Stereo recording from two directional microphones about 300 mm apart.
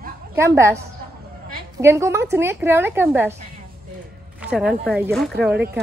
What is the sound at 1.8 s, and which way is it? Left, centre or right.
A woman's voice, centre.